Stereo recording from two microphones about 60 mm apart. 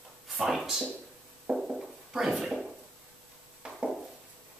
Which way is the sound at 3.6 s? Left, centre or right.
Centre.